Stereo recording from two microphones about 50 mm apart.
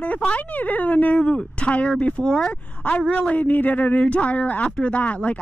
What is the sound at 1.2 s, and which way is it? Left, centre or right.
Speech, centre.